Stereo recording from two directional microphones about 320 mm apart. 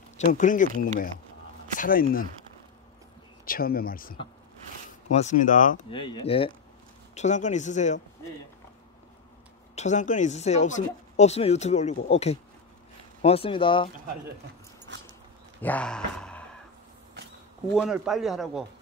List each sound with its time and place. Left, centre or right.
0.2 s speech: left
1.8 s speech: left
3.4 s speech: left
9.8 s speech: left
14.9 s dog: right
15.6 s speech: centre
17.7 s speech: centre